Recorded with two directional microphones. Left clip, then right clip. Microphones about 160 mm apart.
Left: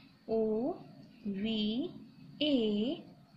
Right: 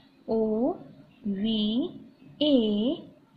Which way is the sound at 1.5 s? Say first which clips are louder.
Right 6 dB; 20° left (ahead or behind).